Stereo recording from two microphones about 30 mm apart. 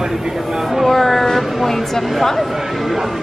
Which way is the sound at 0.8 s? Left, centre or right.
Centre.